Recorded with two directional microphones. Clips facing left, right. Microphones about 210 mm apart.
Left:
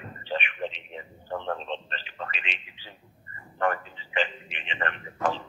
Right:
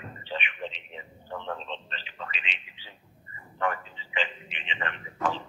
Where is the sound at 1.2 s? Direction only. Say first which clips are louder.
Left 4 dB; 45° left (ahead or behind).